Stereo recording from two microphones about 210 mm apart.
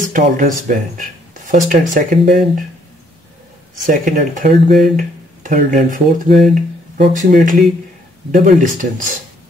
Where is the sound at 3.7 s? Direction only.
40° right (ahead or behind).